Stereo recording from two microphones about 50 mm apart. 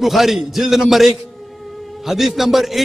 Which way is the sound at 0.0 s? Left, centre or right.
Centre.